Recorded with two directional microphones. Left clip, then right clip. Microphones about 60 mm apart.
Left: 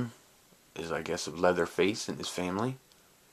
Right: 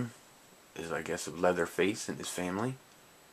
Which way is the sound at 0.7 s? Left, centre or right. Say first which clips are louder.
Left 2 dB; left.